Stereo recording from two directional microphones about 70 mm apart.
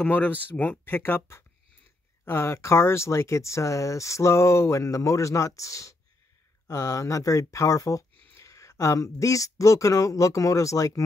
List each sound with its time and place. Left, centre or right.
0.0 s speech: left